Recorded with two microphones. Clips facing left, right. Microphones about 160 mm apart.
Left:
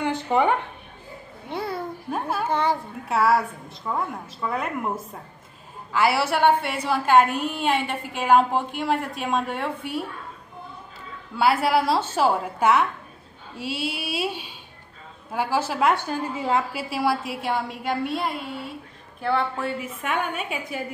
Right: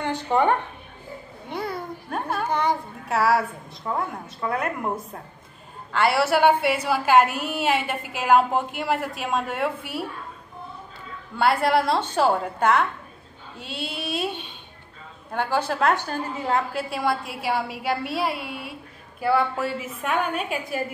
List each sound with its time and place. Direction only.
0.0 s a sound: 10° left (ahead or behind)
1.5 s babbling: 30° left (ahead or behind)
2.0 s a woman's voice: centre (ahead or behind)
5.9 s a woman's voice: centre (ahead or behind)
11.3 s a woman's voice: 5° left (ahead or behind)
13.6 s a sound: 5° left (ahead or behind)
15.3 s a woman's voice: 5° left (ahead or behind)